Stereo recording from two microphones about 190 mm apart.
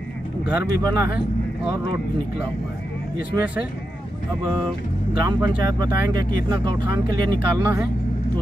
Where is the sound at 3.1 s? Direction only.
5° right (ahead or behind).